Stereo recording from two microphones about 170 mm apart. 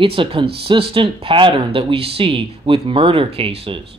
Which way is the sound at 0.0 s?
30° right (ahead or behind).